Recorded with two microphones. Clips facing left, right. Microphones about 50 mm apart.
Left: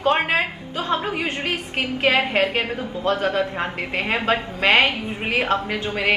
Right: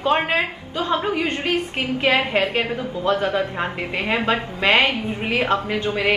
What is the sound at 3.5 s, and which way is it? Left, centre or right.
A woman's voice, centre.